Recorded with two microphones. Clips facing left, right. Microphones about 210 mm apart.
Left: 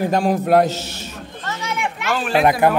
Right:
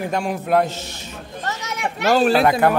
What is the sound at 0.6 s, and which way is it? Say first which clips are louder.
Speech: left 5 dB; 85° left.